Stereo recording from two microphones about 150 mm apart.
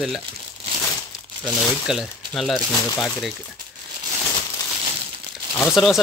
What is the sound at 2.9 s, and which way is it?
Speech, 20° left (ahead or behind).